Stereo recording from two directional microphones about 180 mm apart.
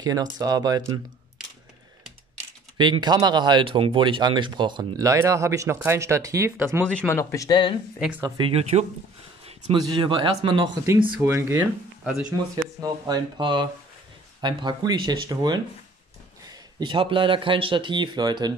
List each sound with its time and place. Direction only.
0.0 s speech: 20° right (ahead or behind)
2.8 s speech: 25° right (ahead or behind)
7.0 s speech: 15° left (ahead or behind)
8.0 s speech: 10° right (ahead or behind)
8.4 s speech: 35° right (ahead or behind)
11.1 s speech: 15° right (ahead or behind)
12.8 s speech: 20° right (ahead or behind)